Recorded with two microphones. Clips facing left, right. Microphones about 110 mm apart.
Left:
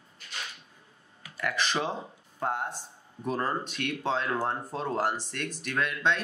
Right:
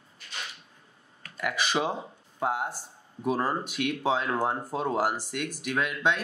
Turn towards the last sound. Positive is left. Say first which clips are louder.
# right 1 dB
turn(degrees=-10)  # may be behind; listen again after turning